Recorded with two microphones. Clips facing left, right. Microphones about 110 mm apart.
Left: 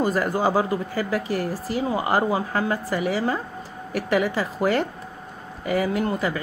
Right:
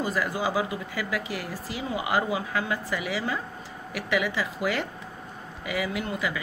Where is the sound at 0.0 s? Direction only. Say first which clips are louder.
Left 6 dB; 45° left (ahead or behind).